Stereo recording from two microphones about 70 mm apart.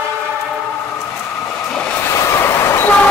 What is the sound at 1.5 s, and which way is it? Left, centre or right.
Vehicle, centre.